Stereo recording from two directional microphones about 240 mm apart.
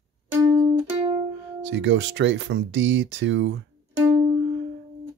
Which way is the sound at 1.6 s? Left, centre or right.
Right.